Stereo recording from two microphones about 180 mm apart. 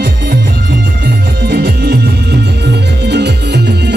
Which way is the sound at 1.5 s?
60° right (ahead or behind).